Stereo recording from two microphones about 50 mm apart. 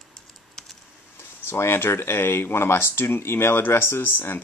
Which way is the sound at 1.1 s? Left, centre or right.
Left.